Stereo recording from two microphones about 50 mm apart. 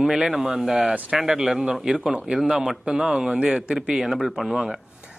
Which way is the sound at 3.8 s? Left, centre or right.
Centre.